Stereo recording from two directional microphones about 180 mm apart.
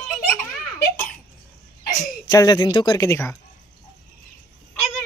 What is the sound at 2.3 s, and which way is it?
Speech, 20° left (ahead or behind).